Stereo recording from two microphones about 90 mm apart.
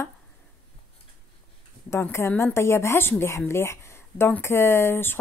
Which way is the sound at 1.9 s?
25° left (ahead or behind).